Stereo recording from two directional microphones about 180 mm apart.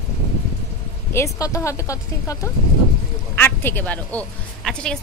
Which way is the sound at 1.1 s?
15° left (ahead or behind).